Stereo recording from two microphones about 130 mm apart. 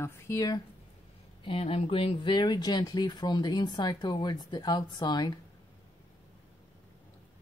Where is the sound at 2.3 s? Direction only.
35° left (ahead or behind).